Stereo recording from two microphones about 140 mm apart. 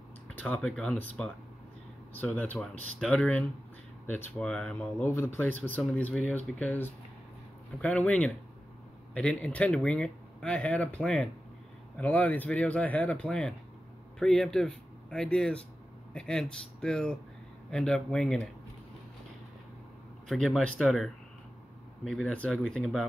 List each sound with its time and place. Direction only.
0.3 s speech: 10° left (ahead or behind)
5.0 s speech: 20° left (ahead or behind)
20.2 s speech: centre (ahead or behind)